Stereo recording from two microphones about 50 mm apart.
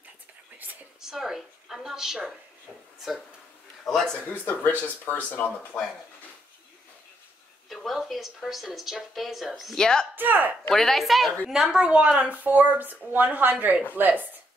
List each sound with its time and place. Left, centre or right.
1.0 s a woman's voice: centre
3.8 s speech: centre
4.3 s speech: left
7.7 s a woman's voice: centre
9.8 s speech: centre
10.1 s a woman's voice: right
10.7 s a woman's voice: centre
11.6 s a woman's voice: centre
12.4 s a woman's voice: right